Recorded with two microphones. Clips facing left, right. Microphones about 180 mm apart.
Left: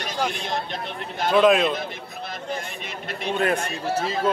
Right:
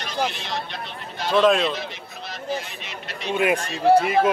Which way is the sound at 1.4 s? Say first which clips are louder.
Left 1 dB; centre (ahead or behind).